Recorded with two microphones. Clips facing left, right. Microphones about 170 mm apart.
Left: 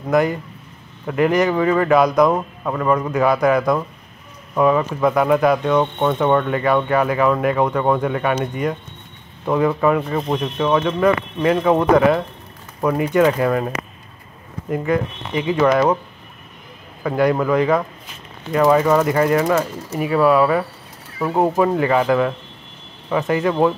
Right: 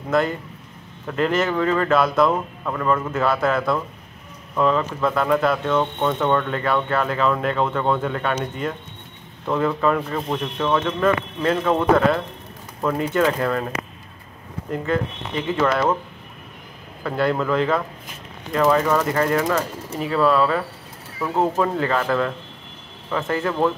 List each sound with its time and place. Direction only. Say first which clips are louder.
1.0 s speech: left 4 dB; 10° left (ahead or behind)
14.7 s speech: left 3 dB; 10° left (ahead or behind)
17.0 s speech: left 4 dB; 10° left (ahead or behind)
23.3 s speech: left 4 dB; 15° left (ahead or behind)